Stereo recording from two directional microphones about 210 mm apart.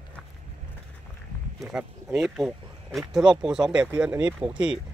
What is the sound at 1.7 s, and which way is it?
Speech, centre (ahead or behind).